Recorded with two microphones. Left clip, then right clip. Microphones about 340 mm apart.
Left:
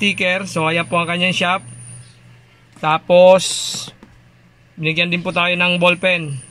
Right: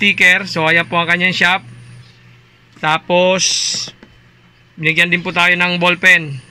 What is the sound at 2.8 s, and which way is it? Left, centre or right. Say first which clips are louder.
Speech: left 2 dB; centre.